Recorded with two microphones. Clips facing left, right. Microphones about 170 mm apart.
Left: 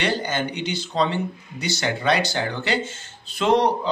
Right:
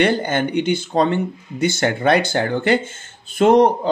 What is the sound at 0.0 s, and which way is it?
Speech, 55° right (ahead or behind).